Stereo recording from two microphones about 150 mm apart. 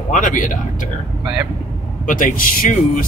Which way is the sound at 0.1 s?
60° left (ahead or behind).